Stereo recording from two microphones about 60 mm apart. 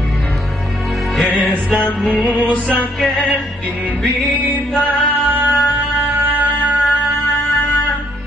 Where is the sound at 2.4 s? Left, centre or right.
Left.